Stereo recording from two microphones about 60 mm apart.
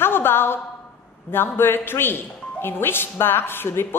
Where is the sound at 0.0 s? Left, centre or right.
Left.